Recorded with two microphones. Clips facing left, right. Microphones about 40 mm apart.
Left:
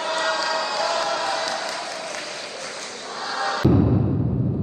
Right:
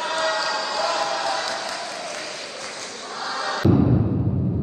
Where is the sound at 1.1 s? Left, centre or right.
Left.